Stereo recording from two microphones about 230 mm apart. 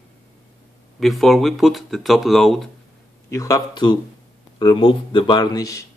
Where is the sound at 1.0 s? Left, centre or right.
Centre.